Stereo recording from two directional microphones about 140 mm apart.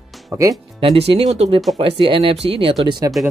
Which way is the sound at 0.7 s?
40° right (ahead or behind).